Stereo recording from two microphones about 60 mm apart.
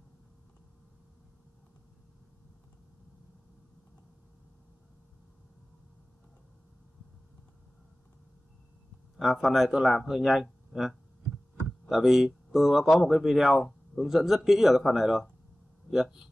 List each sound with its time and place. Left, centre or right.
9.1 s speech: centre